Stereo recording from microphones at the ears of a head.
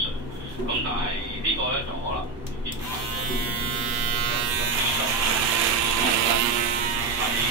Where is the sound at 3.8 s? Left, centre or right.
Right.